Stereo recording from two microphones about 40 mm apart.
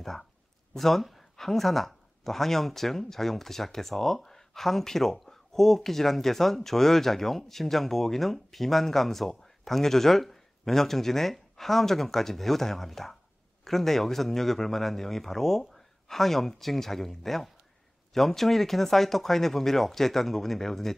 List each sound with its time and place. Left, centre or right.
0.0 s speech: centre